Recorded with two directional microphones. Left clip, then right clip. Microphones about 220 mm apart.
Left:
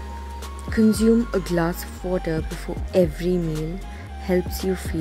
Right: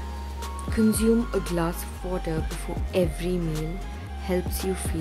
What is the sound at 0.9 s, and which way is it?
Speech, 20° left (ahead or behind).